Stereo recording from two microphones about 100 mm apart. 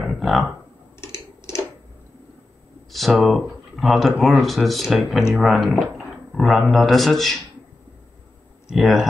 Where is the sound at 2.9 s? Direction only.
Centre (ahead or behind).